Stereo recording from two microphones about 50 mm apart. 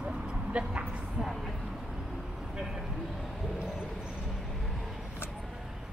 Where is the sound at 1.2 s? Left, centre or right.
Centre.